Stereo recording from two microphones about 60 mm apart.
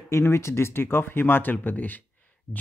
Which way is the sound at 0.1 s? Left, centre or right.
Left.